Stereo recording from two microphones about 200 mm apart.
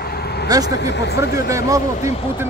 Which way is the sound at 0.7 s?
60° left (ahead or behind).